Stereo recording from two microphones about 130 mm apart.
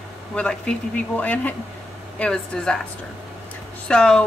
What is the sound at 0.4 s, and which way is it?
Speech, 5° left (ahead or behind).